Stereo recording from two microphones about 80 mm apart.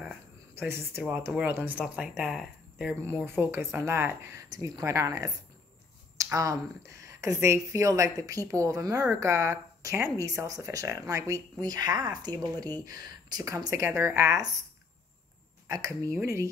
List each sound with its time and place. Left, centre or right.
0.6 s a woman's voice: right; by 2.3 s centre
2.9 s speech: right
4.5 s speech: right
6.3 s speech: right
11.6 s speech: right
15.7 s speech: right